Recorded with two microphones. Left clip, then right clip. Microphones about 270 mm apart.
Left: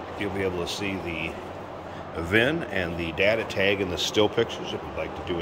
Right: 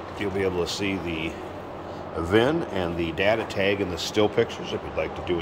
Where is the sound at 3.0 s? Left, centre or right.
Centre.